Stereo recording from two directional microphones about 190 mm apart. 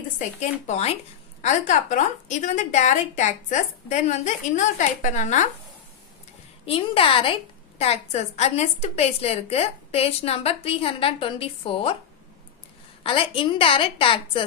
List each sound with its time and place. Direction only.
0.4 s a woman's voice: 35° left (ahead or behind)
6.6 s a woman's voice: 30° left (ahead or behind)
13.0 s a woman's voice: 30° left (ahead or behind)